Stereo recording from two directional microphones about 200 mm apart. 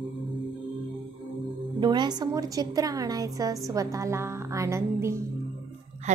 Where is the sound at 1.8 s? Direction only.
20° right (ahead or behind).